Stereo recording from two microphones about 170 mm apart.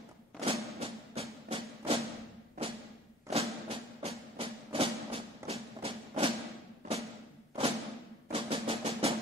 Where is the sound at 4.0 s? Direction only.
35° right (ahead or behind).